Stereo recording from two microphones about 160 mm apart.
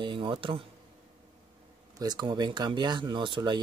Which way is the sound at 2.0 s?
25° right (ahead or behind).